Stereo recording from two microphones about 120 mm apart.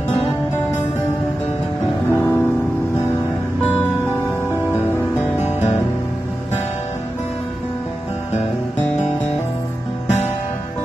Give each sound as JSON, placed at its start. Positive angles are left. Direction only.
{"t": 2.0, "sound": "music", "side_deg": 20}
{"t": 4.7, "sound": "music", "side_deg": 20}
{"t": 5.4, "sound": "music", "side_deg": 70}